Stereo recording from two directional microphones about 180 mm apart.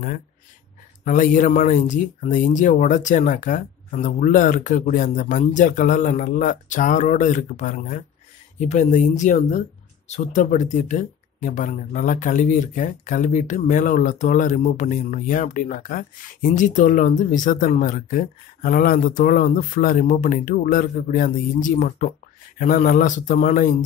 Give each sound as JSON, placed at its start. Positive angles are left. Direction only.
{"t": 1.0, "sound": "speech", "side_deg": 45}